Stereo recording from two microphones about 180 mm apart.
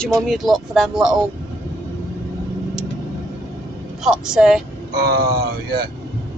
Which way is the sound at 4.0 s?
5° right (ahead or behind).